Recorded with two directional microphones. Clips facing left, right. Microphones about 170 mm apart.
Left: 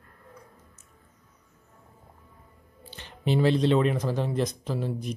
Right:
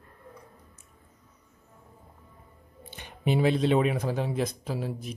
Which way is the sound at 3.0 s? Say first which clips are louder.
Left 1 dB; 10° right (ahead or behind).